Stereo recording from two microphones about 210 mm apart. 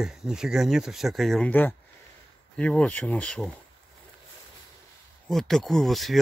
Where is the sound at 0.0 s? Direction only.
Centre (ahead or behind).